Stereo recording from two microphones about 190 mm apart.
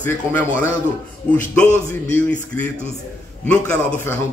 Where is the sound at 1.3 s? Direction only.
10° left (ahead or behind).